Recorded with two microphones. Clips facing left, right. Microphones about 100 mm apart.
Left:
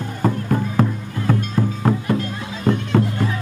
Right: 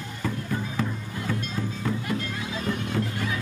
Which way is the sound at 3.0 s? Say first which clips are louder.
Left 8 dB; 65° left (ahead or behind).